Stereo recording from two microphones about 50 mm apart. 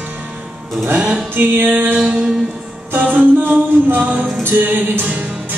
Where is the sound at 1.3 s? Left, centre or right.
Right.